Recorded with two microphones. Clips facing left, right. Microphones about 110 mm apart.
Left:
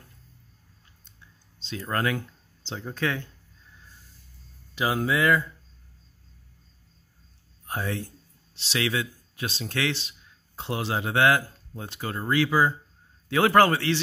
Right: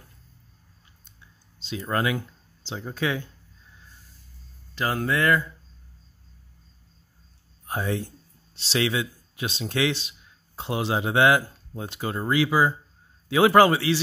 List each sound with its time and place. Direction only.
1.9 s speech: 10° right (ahead or behind)
4.7 s speech: 5° left (ahead or behind)
7.6 s speech: 20° right (ahead or behind)
8.5 s a man's voice: 30° right (ahead or behind); by 13.9 s 10° right (ahead or behind)